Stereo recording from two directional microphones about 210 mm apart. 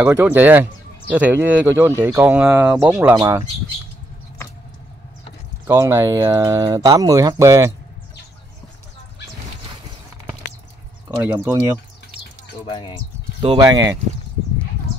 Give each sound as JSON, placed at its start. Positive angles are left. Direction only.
{"t": 0.0, "sound": "speech", "side_deg": -10}
{"t": 5.7, "sound": "speech", "side_deg": -15}
{"t": 11.1, "sound": "speech", "side_deg": -10}
{"t": 12.6, "sound": "speech", "side_deg": 20}
{"t": 13.4, "sound": "speech", "side_deg": -20}